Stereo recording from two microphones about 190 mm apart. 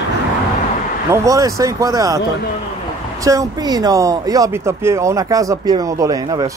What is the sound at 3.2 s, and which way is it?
Speech, 15° right (ahead or behind).